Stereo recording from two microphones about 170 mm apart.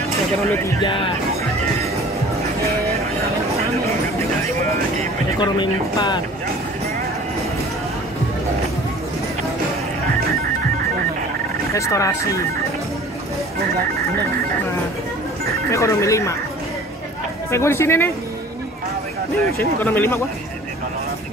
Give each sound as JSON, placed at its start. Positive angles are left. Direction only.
{"t": 0.4, "sound": "speech", "side_deg": 15}
{"t": 0.8, "sound": "speech", "side_deg": 30}
{"t": 5.4, "sound": "speech", "side_deg": 25}
{"t": 11.7, "sound": "speech", "side_deg": 20}
{"t": 15.7, "sound": "speech", "side_deg": 15}
{"t": 17.5, "sound": "speech", "side_deg": 15}
{"t": 19.8, "sound": "speech", "side_deg": 15}